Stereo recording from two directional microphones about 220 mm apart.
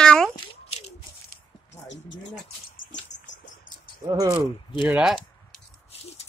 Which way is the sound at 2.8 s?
35° left (ahead or behind).